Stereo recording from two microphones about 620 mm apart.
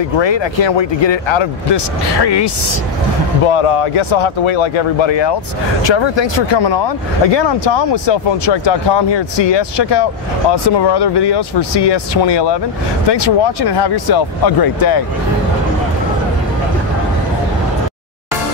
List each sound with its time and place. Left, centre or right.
0.2 s speech: left
3.4 s speech: left